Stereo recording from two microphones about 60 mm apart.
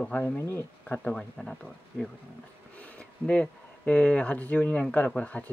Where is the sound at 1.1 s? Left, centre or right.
Centre.